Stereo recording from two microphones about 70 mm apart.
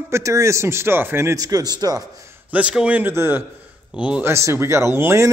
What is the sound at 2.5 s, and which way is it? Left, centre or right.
Speech, centre.